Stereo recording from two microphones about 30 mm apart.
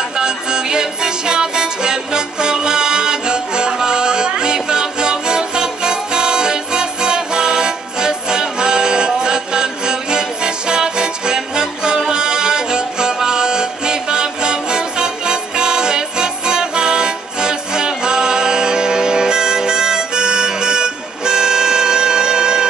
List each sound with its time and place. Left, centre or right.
0.2 s music: right